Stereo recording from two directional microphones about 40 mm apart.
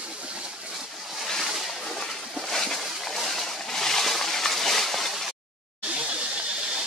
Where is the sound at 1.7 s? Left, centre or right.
Centre.